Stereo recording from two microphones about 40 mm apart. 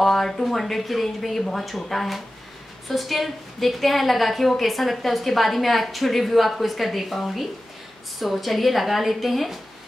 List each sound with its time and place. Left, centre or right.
0.0 s a woman's voice: centre